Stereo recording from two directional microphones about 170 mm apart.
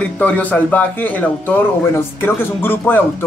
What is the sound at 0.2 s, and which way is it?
Speech, 10° left (ahead or behind).